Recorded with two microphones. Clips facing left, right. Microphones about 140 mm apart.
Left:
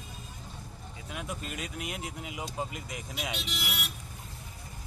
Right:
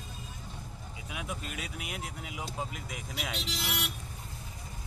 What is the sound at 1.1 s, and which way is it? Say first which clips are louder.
Speech: left 1 dB; centre (ahead or behind).